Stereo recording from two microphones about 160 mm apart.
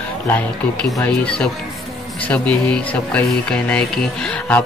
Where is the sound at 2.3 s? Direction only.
10° left (ahead or behind).